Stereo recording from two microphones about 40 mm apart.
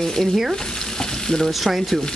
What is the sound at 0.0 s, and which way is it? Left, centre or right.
Frying, centre.